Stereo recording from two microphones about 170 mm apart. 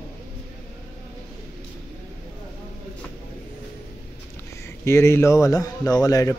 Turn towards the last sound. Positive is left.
turn(degrees=20)  # may be behind; listen again after turning